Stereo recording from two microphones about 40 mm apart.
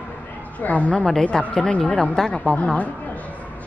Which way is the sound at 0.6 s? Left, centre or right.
Left.